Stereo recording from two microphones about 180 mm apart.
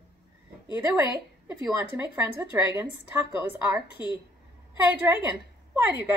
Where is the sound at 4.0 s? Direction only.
25° left (ahead or behind).